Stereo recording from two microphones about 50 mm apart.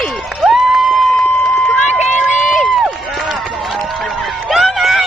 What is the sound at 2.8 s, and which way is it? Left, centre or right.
Run, centre.